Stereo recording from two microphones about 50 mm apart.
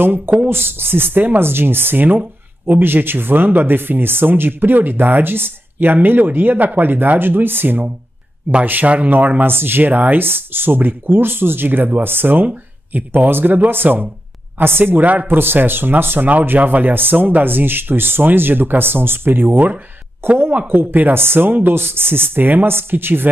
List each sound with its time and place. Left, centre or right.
0.0 s speech: right
0.5 s speech: right
8.6 s speech: right
15.2 s speech: right
16.3 s speech: right
20.2 s speech: right